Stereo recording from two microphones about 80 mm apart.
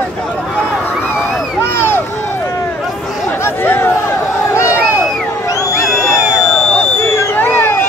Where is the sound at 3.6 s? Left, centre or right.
Left.